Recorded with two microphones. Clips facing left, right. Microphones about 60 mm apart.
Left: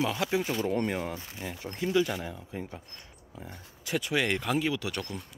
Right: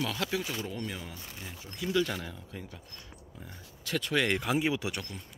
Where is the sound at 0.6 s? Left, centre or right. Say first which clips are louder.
Left 8 dB; left.